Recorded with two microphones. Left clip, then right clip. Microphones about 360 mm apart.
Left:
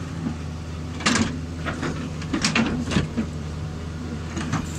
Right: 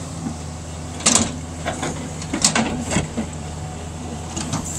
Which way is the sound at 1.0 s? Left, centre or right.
Centre.